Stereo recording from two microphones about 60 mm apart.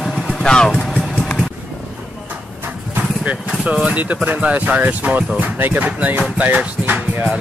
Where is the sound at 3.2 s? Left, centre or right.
Centre.